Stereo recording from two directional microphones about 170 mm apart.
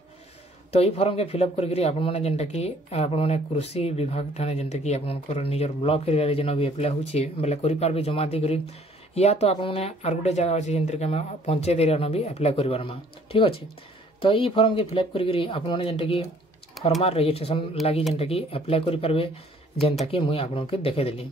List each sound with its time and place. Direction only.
0.7 s speech: 35° left (ahead or behind)